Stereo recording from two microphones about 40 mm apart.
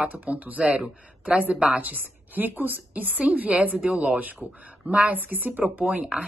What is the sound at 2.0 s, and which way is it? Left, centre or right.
A woman's voice, right.